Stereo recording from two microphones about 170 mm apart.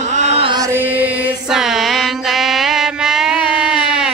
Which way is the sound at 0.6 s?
15° right (ahead or behind).